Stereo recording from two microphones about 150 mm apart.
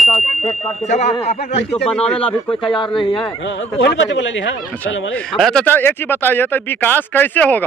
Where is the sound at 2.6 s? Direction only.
35° left (ahead or behind).